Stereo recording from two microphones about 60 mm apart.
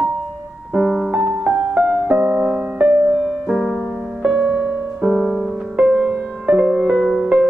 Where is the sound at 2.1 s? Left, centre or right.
Right.